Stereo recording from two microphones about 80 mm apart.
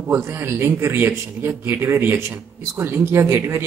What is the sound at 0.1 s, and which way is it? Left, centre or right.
Speech, right.